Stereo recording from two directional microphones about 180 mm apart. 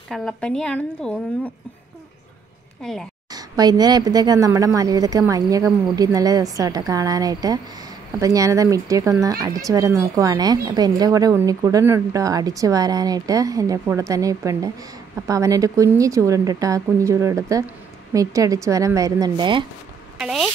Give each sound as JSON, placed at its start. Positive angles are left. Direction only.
{"t": 0.1, "sound": "a woman's voice", "side_deg": 5}
{"t": 2.8, "sound": "a woman's voice", "side_deg": 0}
{"t": 3.3, "sound": "a woman's voice", "side_deg": -20}
{"t": 20.2, "sound": "speech", "side_deg": -5}